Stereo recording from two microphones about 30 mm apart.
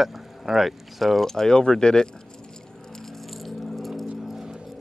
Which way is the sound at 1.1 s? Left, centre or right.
Centre.